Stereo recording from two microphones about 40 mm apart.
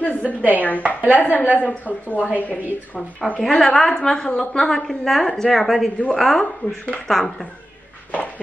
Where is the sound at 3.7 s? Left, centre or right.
Centre.